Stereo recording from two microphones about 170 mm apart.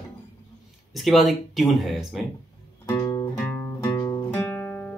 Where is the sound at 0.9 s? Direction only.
Centre (ahead or behind).